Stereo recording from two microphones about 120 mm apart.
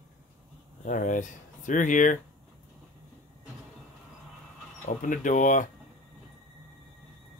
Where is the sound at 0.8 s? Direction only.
90° left.